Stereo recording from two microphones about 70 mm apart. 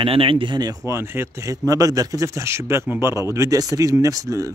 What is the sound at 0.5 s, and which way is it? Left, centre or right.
Speech, right.